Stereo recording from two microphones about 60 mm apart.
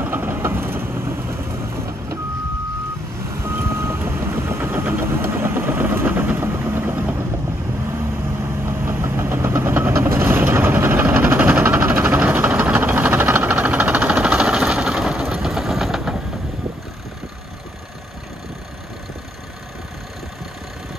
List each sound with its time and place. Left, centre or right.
0.0 s vehicle: right
3.4 s vehicle: right
8.6 s vehicle: right; by 16.2 s centre